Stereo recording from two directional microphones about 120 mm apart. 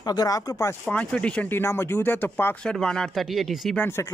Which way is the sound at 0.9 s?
10° left (ahead or behind).